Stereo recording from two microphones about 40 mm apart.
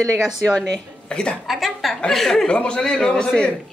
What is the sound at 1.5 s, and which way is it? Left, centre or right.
Speech, centre.